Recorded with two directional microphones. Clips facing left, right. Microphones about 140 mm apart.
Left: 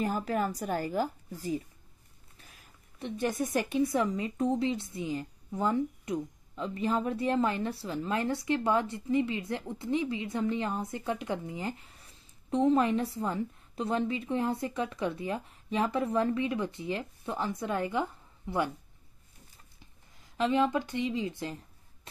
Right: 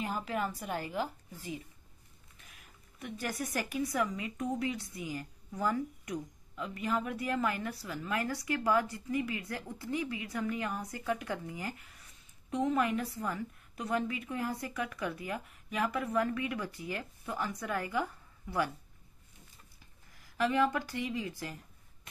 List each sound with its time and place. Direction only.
0.0 s a woman's voice: 40° left (ahead or behind); by 18.7 s 25° left (ahead or behind)
20.2 s speech: 20° left (ahead or behind)
22.1 s a sound: 30° left (ahead or behind)